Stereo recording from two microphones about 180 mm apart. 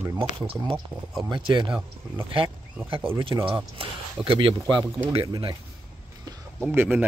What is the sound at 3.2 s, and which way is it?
Speech, 30° right (ahead or behind).